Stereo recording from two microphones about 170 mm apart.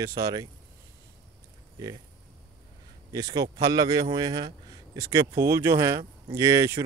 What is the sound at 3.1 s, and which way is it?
Speech, 20° right (ahead or behind).